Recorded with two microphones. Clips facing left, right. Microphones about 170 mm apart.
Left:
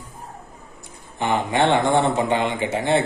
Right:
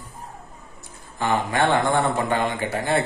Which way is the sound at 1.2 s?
20° left (ahead or behind).